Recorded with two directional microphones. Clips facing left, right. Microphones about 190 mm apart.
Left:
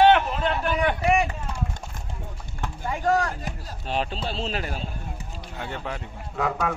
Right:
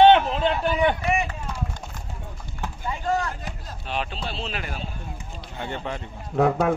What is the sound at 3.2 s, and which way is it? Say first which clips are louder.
Speech: left 2 dB; 40° left (ahead or behind).